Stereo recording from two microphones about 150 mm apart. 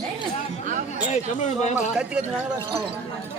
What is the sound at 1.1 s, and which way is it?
Speech, 50° left (ahead or behind).